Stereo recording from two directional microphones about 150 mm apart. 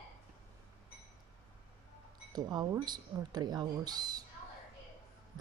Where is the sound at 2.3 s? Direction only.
30° right (ahead or behind).